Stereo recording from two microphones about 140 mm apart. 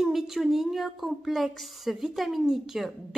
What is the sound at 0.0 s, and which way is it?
Speech, centre (ahead or behind).